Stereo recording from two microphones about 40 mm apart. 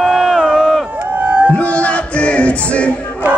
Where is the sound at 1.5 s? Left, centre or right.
Left.